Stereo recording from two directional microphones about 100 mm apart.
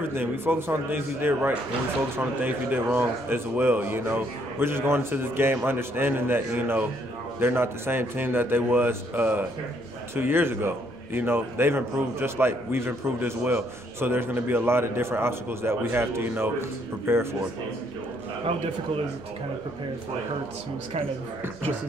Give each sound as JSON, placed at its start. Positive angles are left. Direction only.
{"t": 0.1, "sound": "a man's voice", "side_deg": -20}